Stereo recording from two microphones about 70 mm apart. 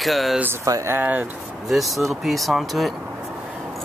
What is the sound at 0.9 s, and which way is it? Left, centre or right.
Speech, right.